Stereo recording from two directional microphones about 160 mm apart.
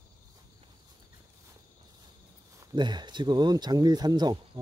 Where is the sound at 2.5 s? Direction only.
25° right (ahead or behind).